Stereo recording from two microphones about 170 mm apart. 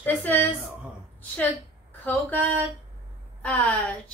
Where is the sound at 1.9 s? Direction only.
10° left (ahead or behind).